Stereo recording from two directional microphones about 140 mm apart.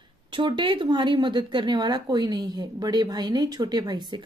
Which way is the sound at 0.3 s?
35° right (ahead or behind).